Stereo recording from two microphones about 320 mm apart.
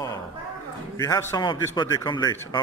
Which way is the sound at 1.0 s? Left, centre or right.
Centre.